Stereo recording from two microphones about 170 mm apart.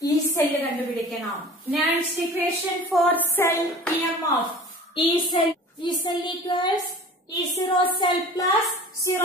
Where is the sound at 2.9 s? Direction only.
5° left (ahead or behind).